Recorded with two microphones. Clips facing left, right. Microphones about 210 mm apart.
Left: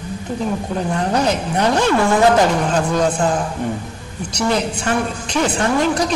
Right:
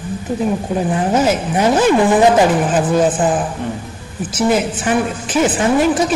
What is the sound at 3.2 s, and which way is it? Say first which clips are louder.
Speech: right 2 dB; 20° right (ahead or behind).